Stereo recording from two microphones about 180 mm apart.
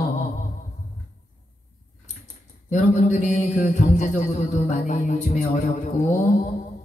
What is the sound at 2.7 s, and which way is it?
A man's voice, 40° left (ahead or behind).